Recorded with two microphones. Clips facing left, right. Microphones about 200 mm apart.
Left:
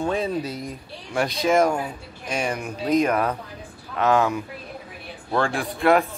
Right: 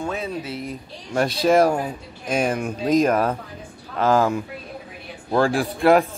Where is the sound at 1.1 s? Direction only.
30° right (ahead or behind).